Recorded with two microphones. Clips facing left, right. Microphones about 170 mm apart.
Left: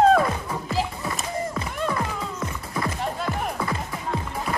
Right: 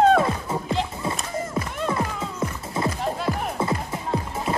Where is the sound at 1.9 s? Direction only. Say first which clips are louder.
Right 1 dB; 25° right (ahead or behind).